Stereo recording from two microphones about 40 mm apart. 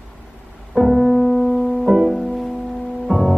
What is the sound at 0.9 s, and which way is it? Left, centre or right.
Music, centre.